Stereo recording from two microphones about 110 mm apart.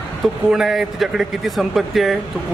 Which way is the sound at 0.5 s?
5° right (ahead or behind).